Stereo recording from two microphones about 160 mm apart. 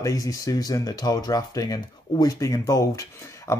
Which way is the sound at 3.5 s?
15° left (ahead or behind).